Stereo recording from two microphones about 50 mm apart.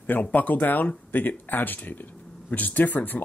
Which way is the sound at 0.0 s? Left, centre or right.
Left.